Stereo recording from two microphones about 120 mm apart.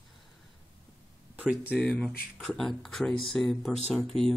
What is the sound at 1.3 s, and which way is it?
Speech, 15° right (ahead or behind).